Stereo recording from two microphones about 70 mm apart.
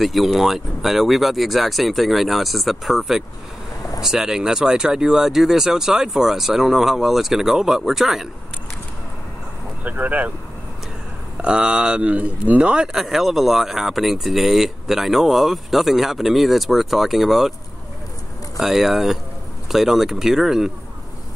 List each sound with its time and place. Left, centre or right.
0.0 s speech: centre
9.8 s speech: right
11.4 s speech: centre
18.6 s speech: centre